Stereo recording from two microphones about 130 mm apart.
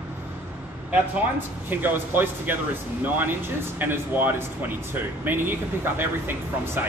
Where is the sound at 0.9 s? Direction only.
15° right (ahead or behind).